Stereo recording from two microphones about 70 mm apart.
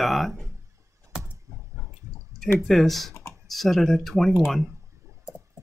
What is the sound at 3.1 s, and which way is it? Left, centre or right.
Computer keyboard, left.